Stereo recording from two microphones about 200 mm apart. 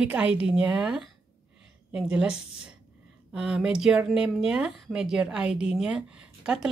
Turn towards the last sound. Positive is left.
turn(degrees=-5)  # may be behind; listen again after turning